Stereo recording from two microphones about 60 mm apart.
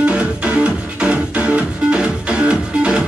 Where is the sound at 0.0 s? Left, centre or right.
Centre.